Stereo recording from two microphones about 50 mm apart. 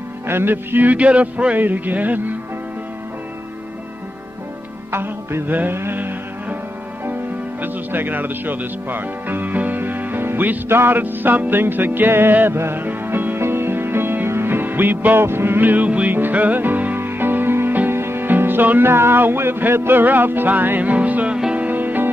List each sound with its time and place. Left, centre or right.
0.3 s music: right
0.9 s a sound: right
1.5 s music: right
4.9 s music: right
5.5 s music: right
7.6 s speech: right
10.7 s music: right
15.2 s music: right